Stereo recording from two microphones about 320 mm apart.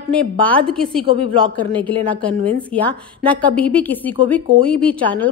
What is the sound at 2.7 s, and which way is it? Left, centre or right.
A woman's voice, centre.